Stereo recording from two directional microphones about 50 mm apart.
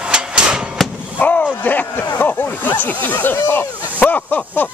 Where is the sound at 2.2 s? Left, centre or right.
Left.